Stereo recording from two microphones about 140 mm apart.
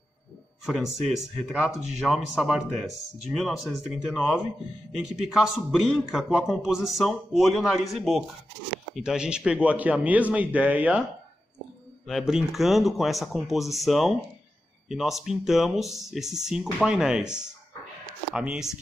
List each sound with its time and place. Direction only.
0.7 s a man's voice: centre (ahead or behind)
12.1 s a man's voice: 5° right (ahead or behind)